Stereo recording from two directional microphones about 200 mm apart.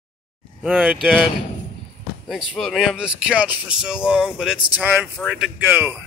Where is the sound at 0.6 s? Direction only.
5° right (ahead or behind).